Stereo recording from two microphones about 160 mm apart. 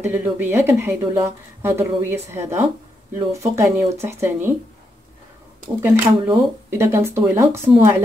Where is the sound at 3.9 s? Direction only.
15° right (ahead or behind).